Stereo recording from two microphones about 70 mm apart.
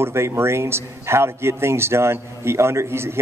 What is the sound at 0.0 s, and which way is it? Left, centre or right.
A man's voice, right.